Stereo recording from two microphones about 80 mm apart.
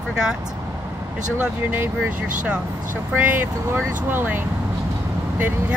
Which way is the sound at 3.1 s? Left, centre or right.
Right.